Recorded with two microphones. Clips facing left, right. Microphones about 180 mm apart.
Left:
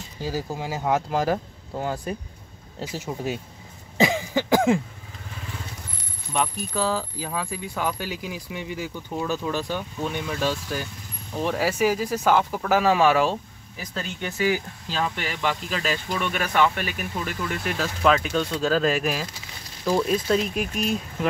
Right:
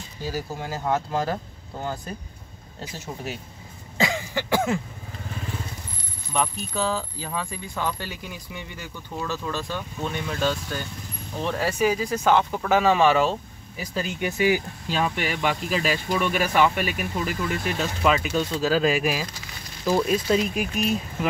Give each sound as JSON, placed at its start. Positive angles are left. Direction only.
{"t": 0.2, "sound": "speech", "side_deg": 15}
{"t": 4.0, "sound": "a sound", "side_deg": 15}
{"t": 6.3, "sound": "speech", "side_deg": 5}
{"t": 13.9, "sound": "speech", "side_deg": -10}